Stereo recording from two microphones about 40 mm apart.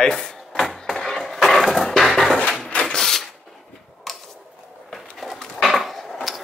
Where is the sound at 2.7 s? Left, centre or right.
Left.